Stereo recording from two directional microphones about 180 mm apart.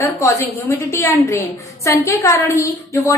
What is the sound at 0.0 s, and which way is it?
A woman's voice, 15° left (ahead or behind).